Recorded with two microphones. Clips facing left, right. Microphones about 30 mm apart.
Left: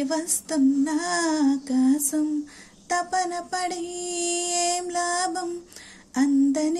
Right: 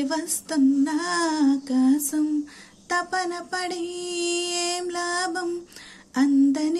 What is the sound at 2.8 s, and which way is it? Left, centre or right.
Speech, right.